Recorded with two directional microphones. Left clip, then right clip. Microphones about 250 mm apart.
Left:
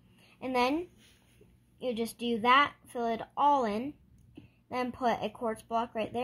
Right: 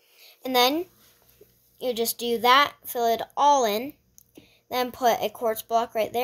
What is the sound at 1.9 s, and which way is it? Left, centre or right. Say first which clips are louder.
Speech: right 7 dB; right.